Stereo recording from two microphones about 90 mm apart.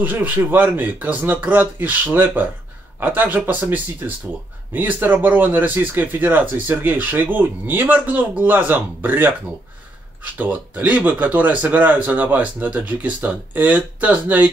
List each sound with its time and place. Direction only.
0.0 s speech: 20° right (ahead or behind)